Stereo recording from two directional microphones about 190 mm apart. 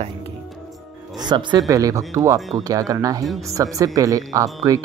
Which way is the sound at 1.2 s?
25° right (ahead or behind).